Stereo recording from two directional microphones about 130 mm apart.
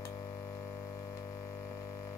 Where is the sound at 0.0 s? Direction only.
25° left (ahead or behind).